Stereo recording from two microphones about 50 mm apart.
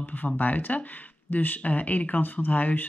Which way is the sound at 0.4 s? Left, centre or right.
Left.